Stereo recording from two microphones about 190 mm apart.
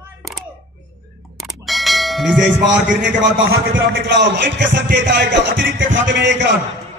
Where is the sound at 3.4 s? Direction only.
85° right; by 6.3 s 70° right (ahead or behind).